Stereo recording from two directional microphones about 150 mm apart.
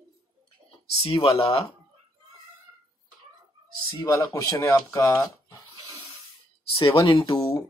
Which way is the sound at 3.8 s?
20° left (ahead or behind).